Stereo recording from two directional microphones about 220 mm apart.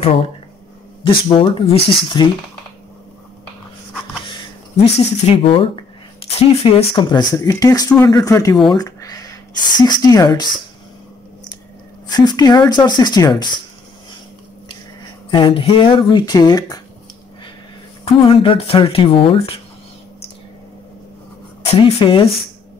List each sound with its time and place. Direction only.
0.0 s speech: 25° left (ahead or behind)
4.9 s speech: 25° left (ahead or behind)
12.1 s speech: 15° left (ahead or behind)
15.3 s speech: 25° left (ahead or behind)
18.0 s speech: 25° left (ahead or behind)
21.6 s speech: 25° left (ahead or behind)